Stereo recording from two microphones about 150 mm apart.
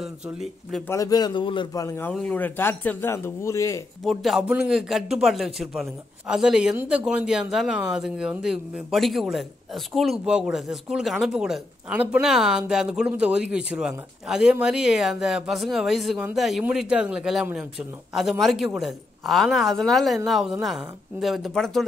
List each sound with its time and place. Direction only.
0.0 s a man's voice: centre (ahead or behind)
0.8 s a man's voice: 20° left (ahead or behind)
4.0 s a man's voice: centre (ahead or behind)